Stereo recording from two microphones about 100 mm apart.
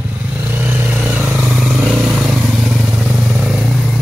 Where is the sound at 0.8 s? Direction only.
15° right (ahead or behind).